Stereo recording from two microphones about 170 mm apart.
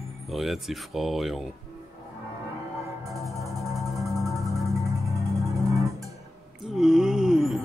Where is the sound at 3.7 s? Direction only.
Centre (ahead or behind).